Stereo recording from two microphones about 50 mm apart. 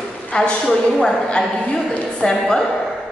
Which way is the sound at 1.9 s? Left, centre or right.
Left.